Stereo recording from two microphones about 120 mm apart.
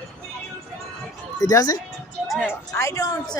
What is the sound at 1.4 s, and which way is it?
Speech, 30° left (ahead or behind).